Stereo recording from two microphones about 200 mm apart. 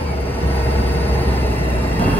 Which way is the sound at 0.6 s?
10° left (ahead or behind).